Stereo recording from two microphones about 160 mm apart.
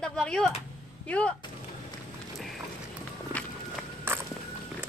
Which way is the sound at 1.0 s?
10° left (ahead or behind).